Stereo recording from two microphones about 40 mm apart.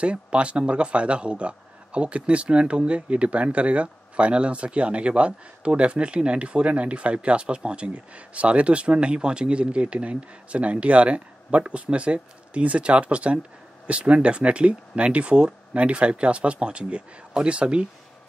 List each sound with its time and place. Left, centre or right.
0.0 s speech: right